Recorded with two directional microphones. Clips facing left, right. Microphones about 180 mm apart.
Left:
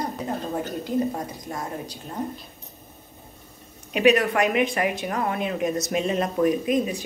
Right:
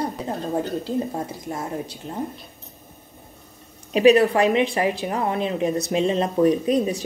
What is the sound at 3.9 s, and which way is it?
A woman's voice, 35° right (ahead or behind).